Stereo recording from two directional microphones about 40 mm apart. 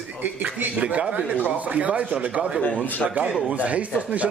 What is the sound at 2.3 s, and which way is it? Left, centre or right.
A man's voice, right.